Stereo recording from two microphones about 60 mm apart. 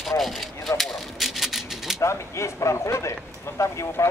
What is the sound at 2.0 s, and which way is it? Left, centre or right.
Speech, left.